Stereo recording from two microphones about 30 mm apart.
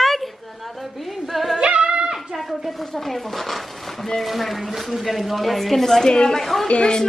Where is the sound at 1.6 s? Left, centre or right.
Right.